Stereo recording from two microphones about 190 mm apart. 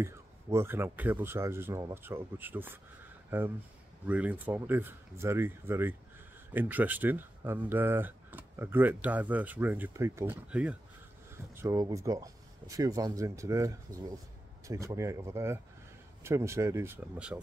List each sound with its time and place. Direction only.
0.0 s speech: 15° right (ahead or behind)